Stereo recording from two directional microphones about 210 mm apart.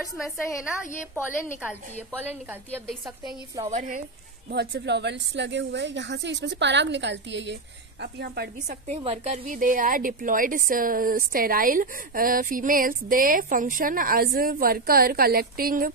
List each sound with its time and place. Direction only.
0.5 s a woman's voice: 15° left (ahead or behind)
3.6 s speech: 35° right (ahead or behind)
4.5 s a woman's voice: 50° right (ahead or behind)
8.6 s a woman's voice: 30° right (ahead or behind)
9.4 s speech: 40° right (ahead or behind)